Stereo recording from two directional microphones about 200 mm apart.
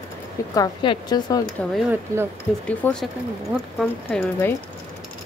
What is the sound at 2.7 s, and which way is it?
Speech, 5° left (ahead or behind).